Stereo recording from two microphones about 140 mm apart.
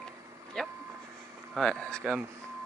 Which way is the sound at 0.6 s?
5° left (ahead or behind).